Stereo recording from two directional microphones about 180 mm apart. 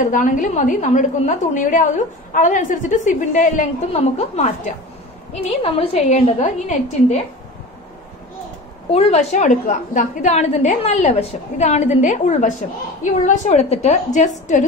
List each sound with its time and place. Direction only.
0.0 s a woman's voice: 45° left (ahead or behind)
8.9 s a woman's voice: 35° left (ahead or behind)